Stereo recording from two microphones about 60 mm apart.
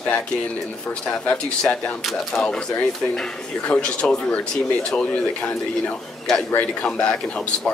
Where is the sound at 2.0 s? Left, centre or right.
Centre.